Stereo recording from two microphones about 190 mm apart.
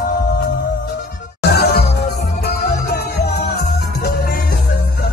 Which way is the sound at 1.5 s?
55° left (ahead or behind).